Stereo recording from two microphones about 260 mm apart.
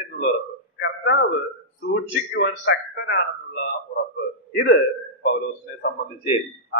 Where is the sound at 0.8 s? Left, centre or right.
Left.